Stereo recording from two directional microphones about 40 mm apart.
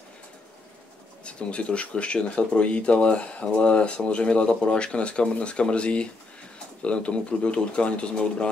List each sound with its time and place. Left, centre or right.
1.2 s speech: left